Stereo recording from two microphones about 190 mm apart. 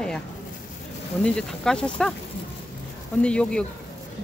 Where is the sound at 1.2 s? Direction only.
5° left (ahead or behind).